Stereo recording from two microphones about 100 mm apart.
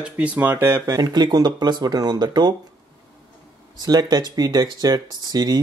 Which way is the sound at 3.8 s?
40° right (ahead or behind).